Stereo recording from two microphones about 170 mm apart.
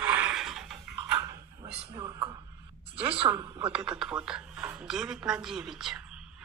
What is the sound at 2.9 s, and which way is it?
Speech, 35° right (ahead or behind).